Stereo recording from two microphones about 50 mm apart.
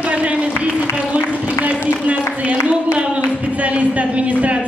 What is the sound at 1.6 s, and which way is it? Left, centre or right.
Speech, right.